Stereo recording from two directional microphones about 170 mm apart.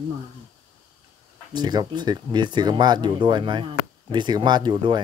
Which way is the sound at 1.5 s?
25° right (ahead or behind).